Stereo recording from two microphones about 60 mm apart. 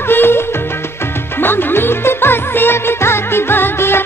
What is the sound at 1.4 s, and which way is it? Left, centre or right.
Music, left.